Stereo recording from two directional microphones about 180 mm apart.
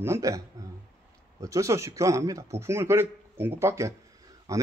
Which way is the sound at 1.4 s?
15° right (ahead or behind).